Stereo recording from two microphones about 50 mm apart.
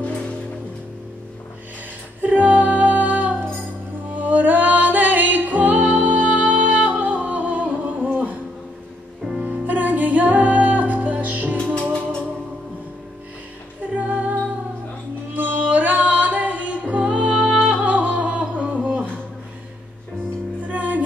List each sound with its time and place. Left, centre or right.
2.2 s music: right
9.4 s music: right
11.5 s music: centre
13.9 s music: right
15.3 s music: right
18.5 s humming: right
20.6 s music: right